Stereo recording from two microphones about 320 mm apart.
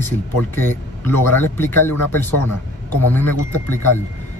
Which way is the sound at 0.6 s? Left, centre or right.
Centre.